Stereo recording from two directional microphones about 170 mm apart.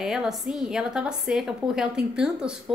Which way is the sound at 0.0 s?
Centre (ahead or behind).